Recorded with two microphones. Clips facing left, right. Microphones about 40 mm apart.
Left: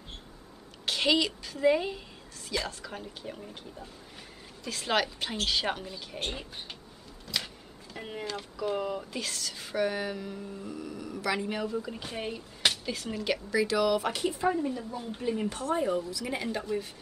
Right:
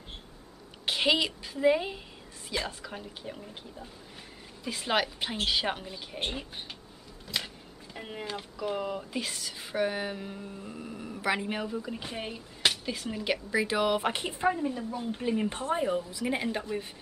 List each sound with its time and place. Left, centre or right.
0.8 s a woman's voice: centre
4.6 s speech: centre
6.3 s speech: centre
7.2 s power windows: centre
8.3 s speech: centre
11.7 s speech: centre; by 14.5 s right
14.5 s speech: centre
15.5 s a woman's voice: right